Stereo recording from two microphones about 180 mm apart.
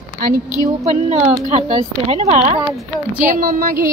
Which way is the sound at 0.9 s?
40° right (ahead or behind).